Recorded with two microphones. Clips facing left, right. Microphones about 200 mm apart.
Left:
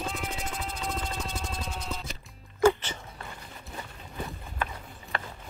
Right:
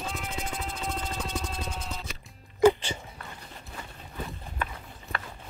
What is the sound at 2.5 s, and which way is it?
Music, 15° right (ahead or behind).